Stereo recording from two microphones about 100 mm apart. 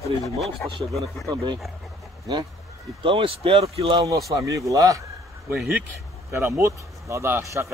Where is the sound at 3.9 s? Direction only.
35° right (ahead or behind).